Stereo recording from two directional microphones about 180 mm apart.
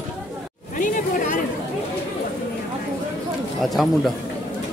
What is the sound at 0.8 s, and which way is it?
Chatter, 45° left (ahead or behind).